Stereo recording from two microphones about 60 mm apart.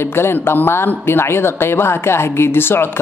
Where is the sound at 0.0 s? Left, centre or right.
Left.